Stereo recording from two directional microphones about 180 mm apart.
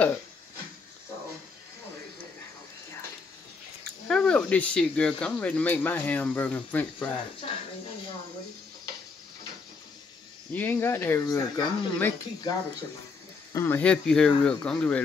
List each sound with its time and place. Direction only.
4.1 s speech: 5° left (ahead or behind)
7.4 s speech: 35° left (ahead or behind)
10.5 s speech: 10° left (ahead or behind)